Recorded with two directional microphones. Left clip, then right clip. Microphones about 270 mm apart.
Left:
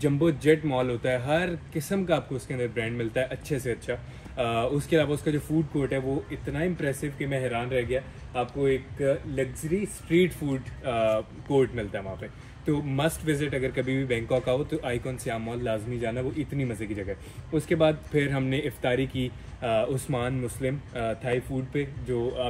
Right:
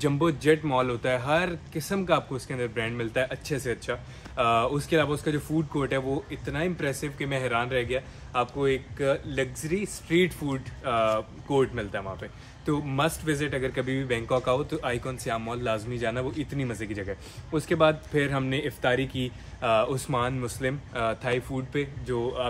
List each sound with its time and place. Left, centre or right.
0.0 s speech: centre